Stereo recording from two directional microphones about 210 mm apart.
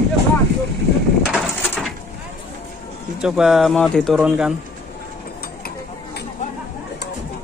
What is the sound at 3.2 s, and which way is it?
Speech, 5° right (ahead or behind).